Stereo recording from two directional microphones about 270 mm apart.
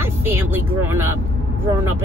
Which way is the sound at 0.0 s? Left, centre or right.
Centre.